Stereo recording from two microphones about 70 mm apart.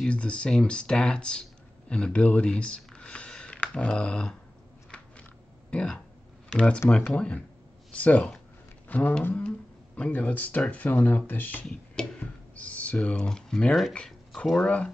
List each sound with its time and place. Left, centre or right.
0.0 s speech: centre
5.7 s speech: centre
8.8 s a sound: left
9.3 s speech: centre